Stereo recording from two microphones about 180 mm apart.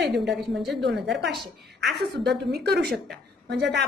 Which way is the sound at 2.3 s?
65° right (ahead or behind).